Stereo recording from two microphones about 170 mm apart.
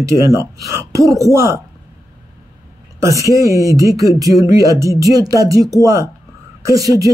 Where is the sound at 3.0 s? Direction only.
20° right (ahead or behind).